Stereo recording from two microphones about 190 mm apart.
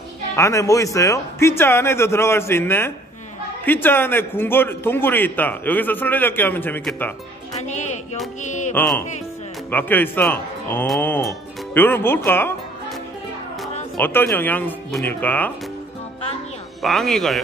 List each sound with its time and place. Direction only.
0.4 s a man's voice: 15° left (ahead or behind)
7.6 s speech: 40° left (ahead or behind)
8.7 s a man's voice: 10° left (ahead or behind)
13.9 s a man's voice: 10° left (ahead or behind)
16.8 s speech: centre (ahead or behind)